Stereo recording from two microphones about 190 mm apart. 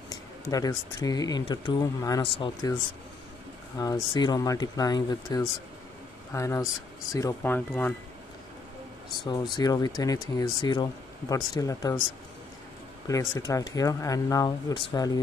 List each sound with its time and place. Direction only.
0.1 s speech: 20° left (ahead or behind)
3.7 s speech: 20° left (ahead or behind)
9.3 s speech: 20° left (ahead or behind)
13.1 s speech: 15° left (ahead or behind)